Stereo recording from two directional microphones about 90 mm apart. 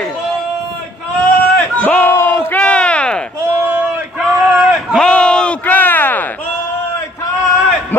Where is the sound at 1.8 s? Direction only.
15° left (ahead or behind).